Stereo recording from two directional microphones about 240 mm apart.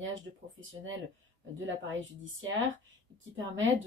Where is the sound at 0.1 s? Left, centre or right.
Right.